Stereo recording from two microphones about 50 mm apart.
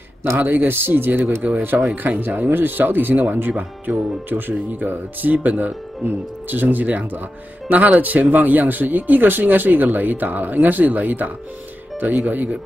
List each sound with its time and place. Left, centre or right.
0.4 s speech: right